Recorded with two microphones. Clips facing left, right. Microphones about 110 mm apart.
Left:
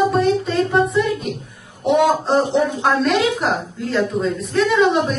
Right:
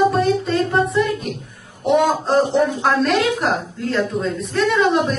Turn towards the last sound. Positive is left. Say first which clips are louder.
# left 1 dB
turn(degrees=0)  # may be behind; listen again after turning